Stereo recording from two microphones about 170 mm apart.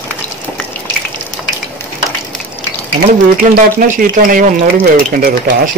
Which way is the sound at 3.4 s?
55° right (ahead or behind).